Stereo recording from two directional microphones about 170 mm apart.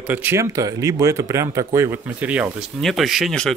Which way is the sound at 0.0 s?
10° right (ahead or behind).